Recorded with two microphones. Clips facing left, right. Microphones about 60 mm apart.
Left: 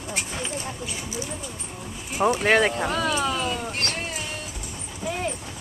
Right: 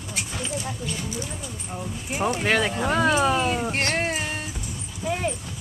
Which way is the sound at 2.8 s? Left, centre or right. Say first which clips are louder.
Right 4 dB; right.